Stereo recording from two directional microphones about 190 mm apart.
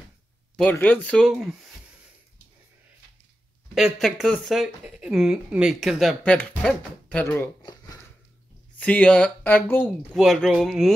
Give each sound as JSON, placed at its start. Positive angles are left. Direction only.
{"t": 0.6, "sound": "speech", "side_deg": 10}
{"t": 3.7, "sound": "speech", "side_deg": 0}
{"t": 7.6, "sound": "a sound", "side_deg": 20}
{"t": 8.7, "sound": "speech", "side_deg": 5}